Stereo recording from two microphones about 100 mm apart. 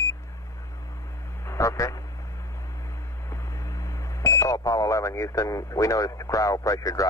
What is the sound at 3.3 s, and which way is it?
Speech, 30° left (ahead or behind).